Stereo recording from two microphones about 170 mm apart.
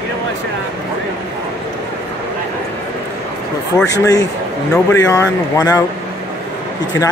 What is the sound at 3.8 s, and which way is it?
Speech, 20° left (ahead or behind).